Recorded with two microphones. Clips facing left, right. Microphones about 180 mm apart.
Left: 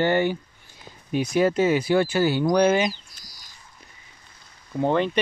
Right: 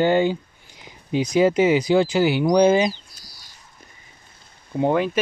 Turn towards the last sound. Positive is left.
turn(degrees=-5)  # may be behind; listen again after turning